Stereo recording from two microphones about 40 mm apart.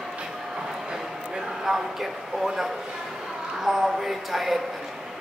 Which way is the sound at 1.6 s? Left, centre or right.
Centre.